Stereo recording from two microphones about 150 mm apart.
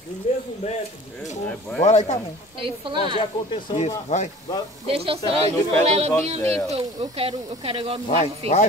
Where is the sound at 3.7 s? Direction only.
50° left (ahead or behind).